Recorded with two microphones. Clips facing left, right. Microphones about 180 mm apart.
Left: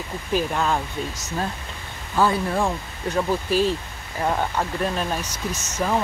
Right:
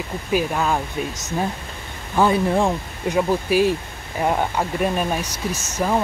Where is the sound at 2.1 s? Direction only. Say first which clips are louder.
Right 3 dB; 20° right (ahead or behind).